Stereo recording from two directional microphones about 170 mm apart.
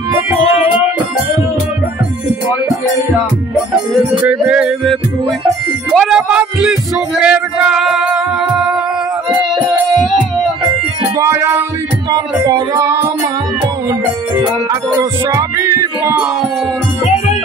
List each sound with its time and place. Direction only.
4.3 s music: 5° right (ahead or behind)
5.9 s speech: 5° right (ahead or behind)
11.1 s music: 15° right (ahead or behind)
14.3 s music: 25° right (ahead or behind)